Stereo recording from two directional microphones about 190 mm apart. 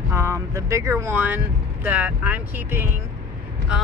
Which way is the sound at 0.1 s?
15° right (ahead or behind).